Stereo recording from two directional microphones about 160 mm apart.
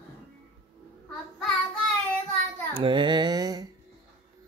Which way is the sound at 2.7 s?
30° right (ahead or behind).